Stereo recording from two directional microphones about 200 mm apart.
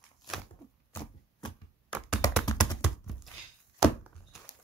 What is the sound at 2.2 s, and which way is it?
Typing, 15° left (ahead or behind).